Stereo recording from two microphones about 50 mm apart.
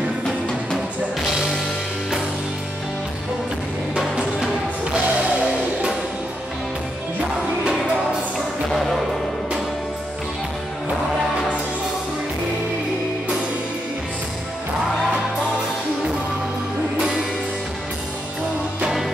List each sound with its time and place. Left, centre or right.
4.9 s music: right